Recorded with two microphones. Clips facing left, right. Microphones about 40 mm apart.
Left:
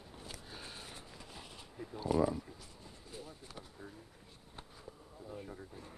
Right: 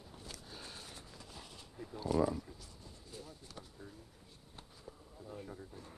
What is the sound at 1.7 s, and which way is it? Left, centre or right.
Speech, centre.